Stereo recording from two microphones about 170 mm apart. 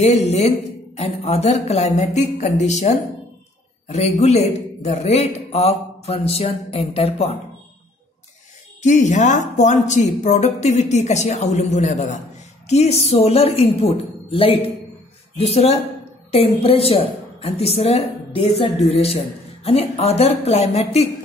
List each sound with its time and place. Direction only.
0.0 s a woman's voice: 40° left (ahead or behind)
8.8 s a woman's voice: 45° left (ahead or behind)